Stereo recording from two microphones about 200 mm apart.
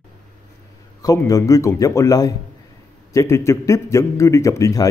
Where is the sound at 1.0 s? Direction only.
15° left (ahead or behind).